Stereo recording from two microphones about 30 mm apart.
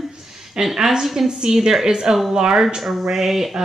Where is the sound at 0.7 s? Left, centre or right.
Centre.